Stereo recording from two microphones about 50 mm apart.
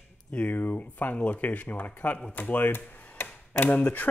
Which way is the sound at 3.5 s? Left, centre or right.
Left.